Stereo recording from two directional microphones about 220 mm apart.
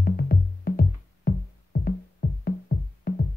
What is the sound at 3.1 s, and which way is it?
Music, 40° left (ahead or behind).